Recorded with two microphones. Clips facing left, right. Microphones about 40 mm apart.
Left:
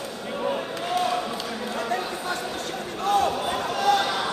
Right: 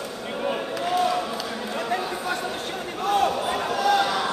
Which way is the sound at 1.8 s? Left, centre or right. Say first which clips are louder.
Right 1 dB; centre.